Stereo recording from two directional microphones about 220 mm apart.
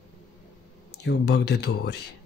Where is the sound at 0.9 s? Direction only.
50° left (ahead or behind).